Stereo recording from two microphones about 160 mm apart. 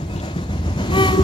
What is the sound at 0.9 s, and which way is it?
Vehicle, 30° left (ahead or behind).